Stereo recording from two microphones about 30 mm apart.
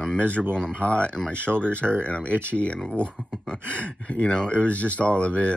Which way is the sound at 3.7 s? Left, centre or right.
Left.